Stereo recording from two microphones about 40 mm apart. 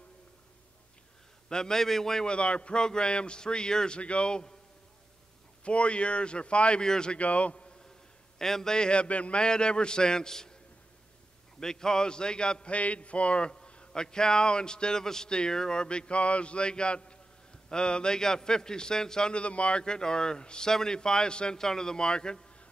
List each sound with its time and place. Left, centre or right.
1.5 s a man's voice: centre
2.2 s a man's voice: left
5.6 s a man's voice: left
7.2 s a man's voice: left
8.4 s a man's voice: centre
8.7 s a man's voice: left
11.6 s a man's voice: centre
12.7 s a man's voice: left
19.8 s a man's voice: centre